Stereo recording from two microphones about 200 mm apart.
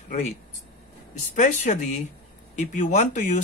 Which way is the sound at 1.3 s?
40° left (ahead or behind).